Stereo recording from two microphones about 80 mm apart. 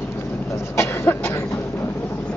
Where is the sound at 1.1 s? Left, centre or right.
Left.